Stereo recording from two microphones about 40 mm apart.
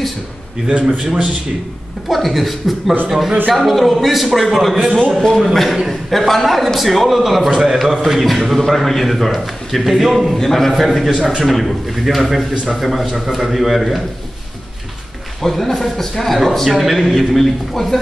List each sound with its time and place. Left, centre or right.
0.8 s speech: centre
2.0 s a man's voice: centre
15.4 s a man's voice: centre